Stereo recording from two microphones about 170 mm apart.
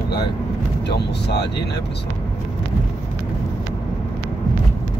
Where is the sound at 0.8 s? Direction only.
80° left.